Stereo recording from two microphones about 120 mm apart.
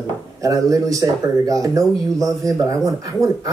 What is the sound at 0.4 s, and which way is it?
Speech, 30° right (ahead or behind).